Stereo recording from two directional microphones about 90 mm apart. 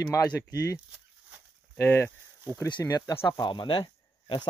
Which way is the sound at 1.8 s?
25° left (ahead or behind).